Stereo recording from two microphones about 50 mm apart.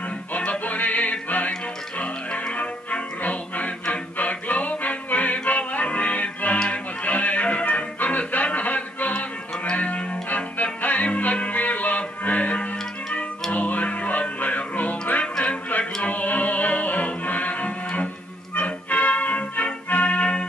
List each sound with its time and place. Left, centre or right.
0.5 s music: left